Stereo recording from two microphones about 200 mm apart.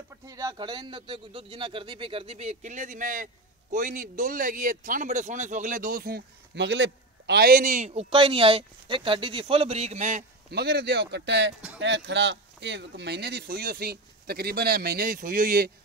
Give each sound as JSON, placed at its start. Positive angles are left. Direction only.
{"t": 0.3, "sound": "a man's voice", "side_deg": -15}
{"t": 10.5, "sound": "speech", "side_deg": -55}